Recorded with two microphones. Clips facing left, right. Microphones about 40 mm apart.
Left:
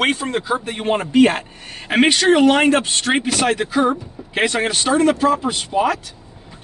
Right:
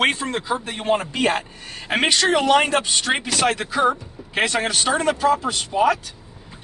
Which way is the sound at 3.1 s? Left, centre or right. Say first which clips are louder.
Left 4 dB; centre.